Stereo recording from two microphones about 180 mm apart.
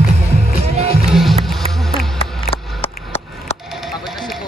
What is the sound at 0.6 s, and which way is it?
Music, 35° right (ahead or behind).